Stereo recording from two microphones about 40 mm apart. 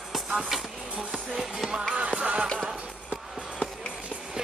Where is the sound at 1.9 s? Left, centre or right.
Right.